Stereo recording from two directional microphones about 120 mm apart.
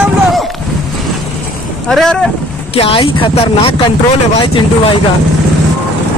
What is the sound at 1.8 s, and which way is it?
Speech, 5° left (ahead or behind).